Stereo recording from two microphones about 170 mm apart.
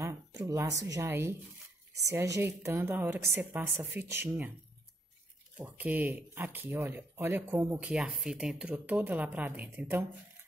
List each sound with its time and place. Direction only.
0.0 s a sound: 20° right (ahead or behind)
0.8 s speech: 15° right (ahead or behind)
5.6 s speech: 10° right (ahead or behind)